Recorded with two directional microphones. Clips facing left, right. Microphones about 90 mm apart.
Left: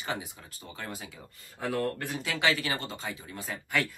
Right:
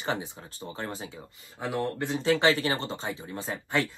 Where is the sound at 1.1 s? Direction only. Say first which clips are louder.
Right 3 dB; 20° right (ahead or behind).